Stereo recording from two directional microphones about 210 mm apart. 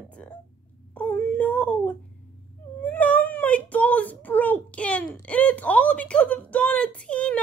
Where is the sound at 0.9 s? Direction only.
10° left (ahead or behind).